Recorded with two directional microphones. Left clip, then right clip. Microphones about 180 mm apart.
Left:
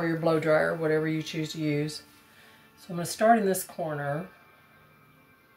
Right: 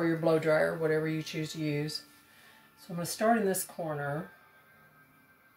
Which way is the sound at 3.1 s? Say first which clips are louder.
Left 6 dB; 20° left (ahead or behind).